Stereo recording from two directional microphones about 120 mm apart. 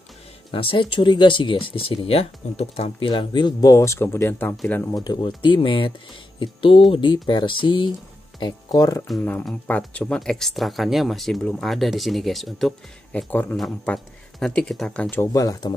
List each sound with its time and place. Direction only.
0.5 s speech: 45° left (ahead or behind); by 4.6 s 20° left (ahead or behind)
4.9 s speech: 35° left (ahead or behind)
9.4 s speech: 10° left (ahead or behind)
13.3 s a man's voice: 15° left (ahead or behind)
13.6 s speech: 5° left (ahead or behind)
15.3 s speech: 30° left (ahead or behind)